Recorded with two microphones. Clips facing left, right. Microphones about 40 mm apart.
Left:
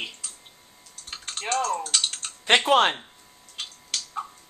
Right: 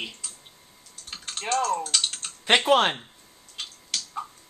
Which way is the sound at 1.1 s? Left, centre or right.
Centre.